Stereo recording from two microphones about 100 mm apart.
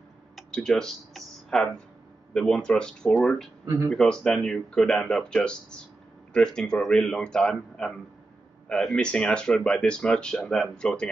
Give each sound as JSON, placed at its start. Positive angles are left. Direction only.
{"t": 0.4, "sound": "speech", "side_deg": 5}
{"t": 3.6, "sound": "speech", "side_deg": -30}
{"t": 3.9, "sound": "speech", "side_deg": 5}